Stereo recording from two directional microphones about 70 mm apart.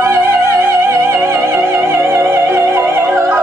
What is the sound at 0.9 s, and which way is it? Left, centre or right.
Music, right.